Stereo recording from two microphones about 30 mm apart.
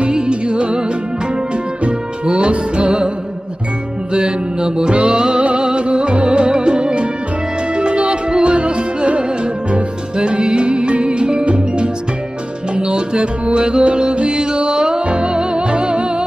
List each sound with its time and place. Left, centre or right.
0.1 s music: right
1.9 s music: right
4.1 s mantra: right
5.0 s music: right
14.6 s music: right